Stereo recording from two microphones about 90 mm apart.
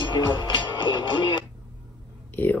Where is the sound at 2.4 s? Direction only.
20° left (ahead or behind).